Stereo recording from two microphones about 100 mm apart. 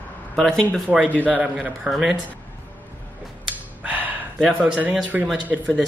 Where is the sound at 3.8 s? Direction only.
15° right (ahead or behind).